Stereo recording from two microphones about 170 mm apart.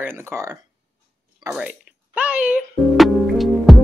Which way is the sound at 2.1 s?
10° right (ahead or behind).